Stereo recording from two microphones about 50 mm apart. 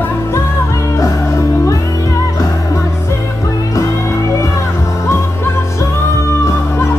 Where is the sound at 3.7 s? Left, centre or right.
Left.